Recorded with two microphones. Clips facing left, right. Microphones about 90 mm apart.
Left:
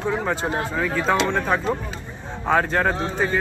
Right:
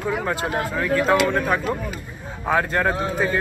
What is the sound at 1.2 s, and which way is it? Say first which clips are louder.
Speech: right 1 dB; 5° right (ahead or behind).